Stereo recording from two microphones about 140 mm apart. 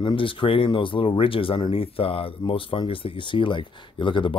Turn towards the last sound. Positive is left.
turn(degrees=35)  # may be behind; listen again after turning